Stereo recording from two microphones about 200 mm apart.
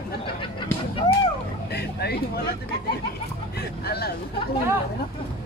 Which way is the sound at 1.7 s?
55° left (ahead or behind).